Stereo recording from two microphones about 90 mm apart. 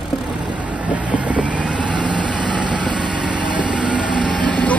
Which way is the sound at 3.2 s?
15° right (ahead or behind).